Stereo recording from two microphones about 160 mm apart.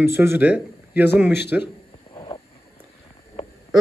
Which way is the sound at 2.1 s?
30° left (ahead or behind).